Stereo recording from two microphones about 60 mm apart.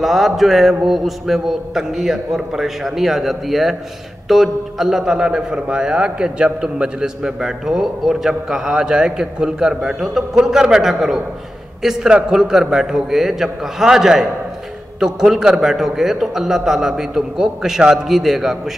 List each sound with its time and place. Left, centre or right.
0.0 s a man's voice: centre